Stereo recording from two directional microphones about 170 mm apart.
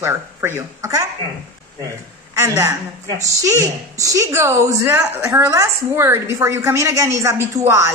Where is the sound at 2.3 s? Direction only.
15° right (ahead or behind).